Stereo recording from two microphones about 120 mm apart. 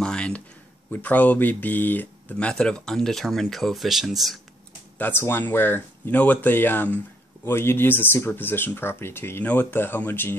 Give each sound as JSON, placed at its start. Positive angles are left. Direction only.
{"t": 0.0, "sound": "a sound", "side_deg": 10}
{"t": 0.8, "sound": "speech", "side_deg": 10}
{"t": 4.9, "sound": "speech", "side_deg": 15}